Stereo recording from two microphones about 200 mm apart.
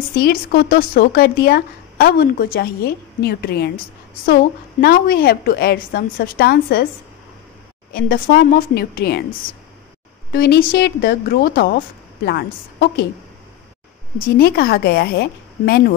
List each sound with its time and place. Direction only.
0.1 s speech: 50° left (ahead or behind)
7.9 s speech: 50° left (ahead or behind)
10.3 s speech: 50° left (ahead or behind)
14.1 s speech: 50° left (ahead or behind)